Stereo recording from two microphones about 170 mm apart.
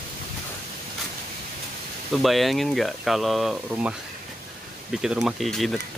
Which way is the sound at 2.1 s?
Centre (ahead or behind).